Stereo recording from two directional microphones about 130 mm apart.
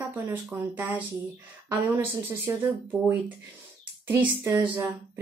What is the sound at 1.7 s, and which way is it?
Speech, 25° right (ahead or behind).